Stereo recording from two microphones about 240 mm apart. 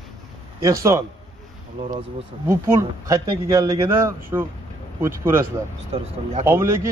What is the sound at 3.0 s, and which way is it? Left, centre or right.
Speech, centre.